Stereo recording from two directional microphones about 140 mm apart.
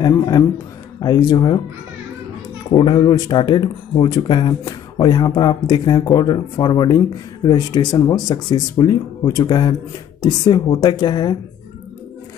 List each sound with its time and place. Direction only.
0.0 s speech: 30° left (ahead or behind)
2.7 s speech: 35° left (ahead or behind)